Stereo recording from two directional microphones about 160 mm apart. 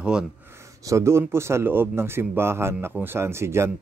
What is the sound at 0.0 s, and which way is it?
Speech, 5° right (ahead or behind).